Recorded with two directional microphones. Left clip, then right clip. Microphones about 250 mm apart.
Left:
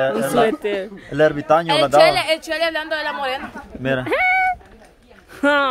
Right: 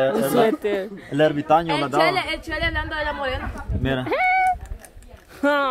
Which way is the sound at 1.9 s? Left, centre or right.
Left.